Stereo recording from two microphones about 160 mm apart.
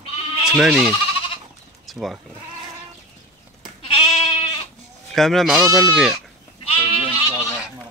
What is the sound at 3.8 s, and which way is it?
Goat, 30° left (ahead or behind).